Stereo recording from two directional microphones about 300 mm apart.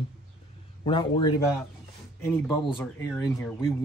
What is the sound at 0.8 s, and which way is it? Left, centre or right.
Speech, centre.